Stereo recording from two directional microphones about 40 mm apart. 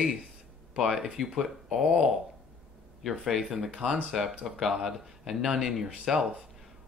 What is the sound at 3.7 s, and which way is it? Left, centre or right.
Speech, right.